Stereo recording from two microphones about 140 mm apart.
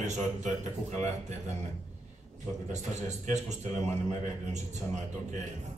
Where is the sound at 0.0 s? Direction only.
55° right (ahead or behind).